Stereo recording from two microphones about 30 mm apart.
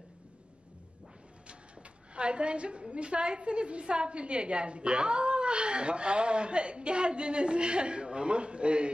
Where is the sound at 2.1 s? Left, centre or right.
Right.